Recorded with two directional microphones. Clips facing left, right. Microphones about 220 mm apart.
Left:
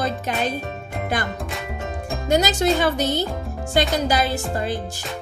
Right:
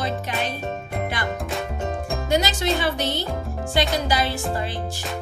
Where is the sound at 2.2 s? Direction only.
45° left (ahead or behind).